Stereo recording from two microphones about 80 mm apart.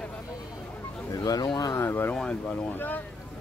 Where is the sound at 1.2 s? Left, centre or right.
Left.